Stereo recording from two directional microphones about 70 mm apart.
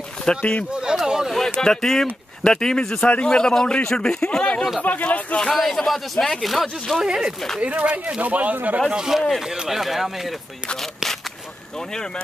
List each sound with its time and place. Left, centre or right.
0.2 s a man's voice: centre
0.7 s a sound: centre
1.6 s a man's voice: centre
4.8 s speech: left
5.5 s speech: centre
7.6 s a man's voice: centre
8.9 s speech: centre